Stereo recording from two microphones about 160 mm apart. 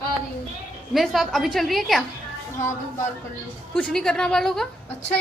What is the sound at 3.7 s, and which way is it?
Speech, 5° left (ahead or behind).